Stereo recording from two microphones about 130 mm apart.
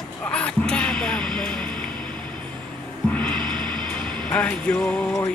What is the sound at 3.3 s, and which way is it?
Music, 35° right (ahead or behind).